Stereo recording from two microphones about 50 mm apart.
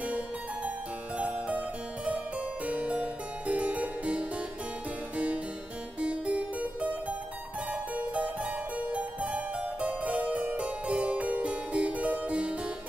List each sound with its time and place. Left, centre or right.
1.1 s harpsichord: right
5.9 s music: right
7.7 s harpsichord: right